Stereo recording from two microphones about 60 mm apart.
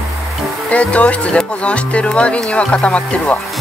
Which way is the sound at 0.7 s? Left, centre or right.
Left.